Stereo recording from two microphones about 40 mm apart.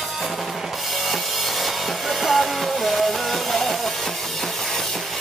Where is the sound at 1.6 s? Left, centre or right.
Centre.